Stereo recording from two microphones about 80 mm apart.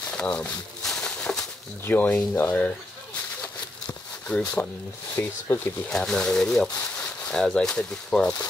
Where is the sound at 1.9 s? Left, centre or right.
Left.